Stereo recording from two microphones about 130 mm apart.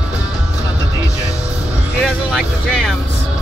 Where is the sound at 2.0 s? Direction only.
5° left (ahead or behind).